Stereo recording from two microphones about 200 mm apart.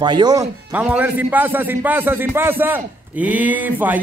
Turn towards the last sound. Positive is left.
turn(degrees=-10)  # may be behind; listen again after turning